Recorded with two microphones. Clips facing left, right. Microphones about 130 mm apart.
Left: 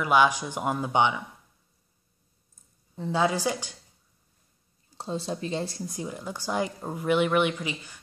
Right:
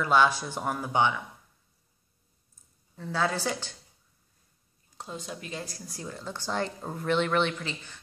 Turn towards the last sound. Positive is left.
turn(degrees=10)  # may be behind; listen again after turning